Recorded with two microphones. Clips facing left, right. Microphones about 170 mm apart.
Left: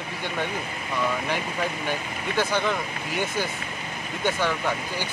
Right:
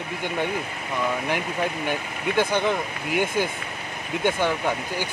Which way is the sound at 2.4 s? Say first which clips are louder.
Right 2 dB; 15° right (ahead or behind).